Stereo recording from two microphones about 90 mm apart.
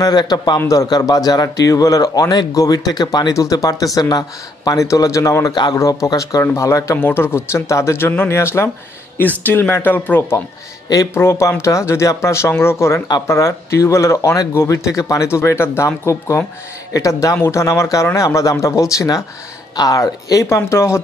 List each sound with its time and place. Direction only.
0.0 s speech: 50° left (ahead or behind)
5.5 s speech: 55° left (ahead or behind)
5.8 s speech: 35° left (ahead or behind); by 10.2 s 20° left (ahead or behind)
11.1 s speech: 30° left (ahead or behind)